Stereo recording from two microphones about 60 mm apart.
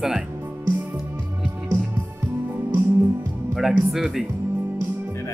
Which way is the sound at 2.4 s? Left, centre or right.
Right.